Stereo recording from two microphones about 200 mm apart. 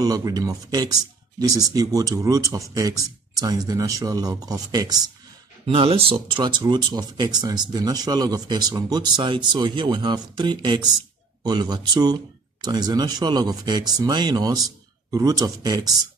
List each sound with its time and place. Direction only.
0.0 s speech: 20° right (ahead or behind)